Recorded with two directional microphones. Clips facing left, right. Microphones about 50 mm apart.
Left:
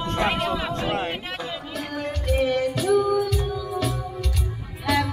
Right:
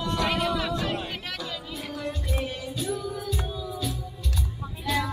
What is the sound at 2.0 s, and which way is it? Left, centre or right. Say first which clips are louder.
Music: left 8 dB; left.